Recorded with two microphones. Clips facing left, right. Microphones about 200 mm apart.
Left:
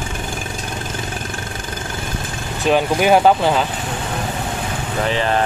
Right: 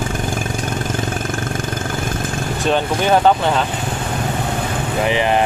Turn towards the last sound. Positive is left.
turn(degrees=-15)  # may be behind; listen again after turning